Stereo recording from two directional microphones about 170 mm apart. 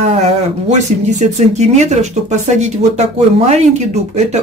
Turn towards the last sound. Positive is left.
turn(degrees=-40)  # may be behind; listen again after turning